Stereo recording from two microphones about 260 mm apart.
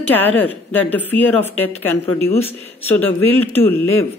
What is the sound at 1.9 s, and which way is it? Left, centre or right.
A woman's voice, centre.